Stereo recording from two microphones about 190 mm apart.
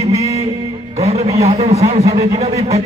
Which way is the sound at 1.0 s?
35° right (ahead or behind).